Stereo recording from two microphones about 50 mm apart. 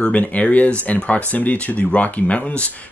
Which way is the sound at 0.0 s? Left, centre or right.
Left.